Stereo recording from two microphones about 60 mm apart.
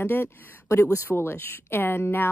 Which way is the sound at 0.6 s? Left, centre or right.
Left.